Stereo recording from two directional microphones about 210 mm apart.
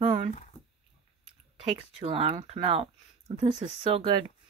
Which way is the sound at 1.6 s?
25° right (ahead or behind).